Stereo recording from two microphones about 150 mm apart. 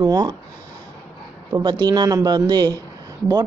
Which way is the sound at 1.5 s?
25° right (ahead or behind).